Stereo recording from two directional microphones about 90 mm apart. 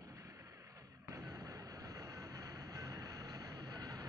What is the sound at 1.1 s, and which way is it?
Vehicle, 40° right (ahead or behind).